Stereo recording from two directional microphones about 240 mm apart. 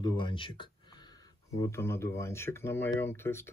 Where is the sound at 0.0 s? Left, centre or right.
Centre.